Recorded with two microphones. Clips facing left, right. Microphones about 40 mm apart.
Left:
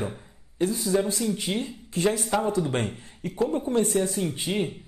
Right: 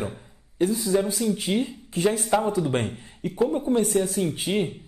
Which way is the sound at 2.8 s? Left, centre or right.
Centre.